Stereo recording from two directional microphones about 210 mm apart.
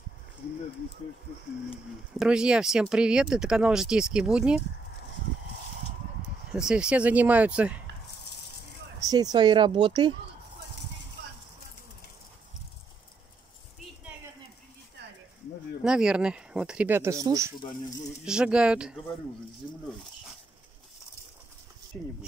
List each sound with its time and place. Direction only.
2.1 s speech: 5° right (ahead or behind)
6.5 s speech: 5° right (ahead or behind)
9.0 s a woman's voice: 20° right (ahead or behind)
15.8 s speech: 5° right (ahead or behind)
17.6 s speech: 20° left (ahead or behind)
18.2 s speech: 5° right (ahead or behind)
21.9 s speech: 5° left (ahead or behind)